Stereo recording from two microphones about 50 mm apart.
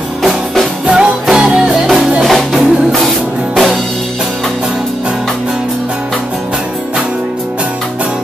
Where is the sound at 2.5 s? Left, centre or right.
Centre.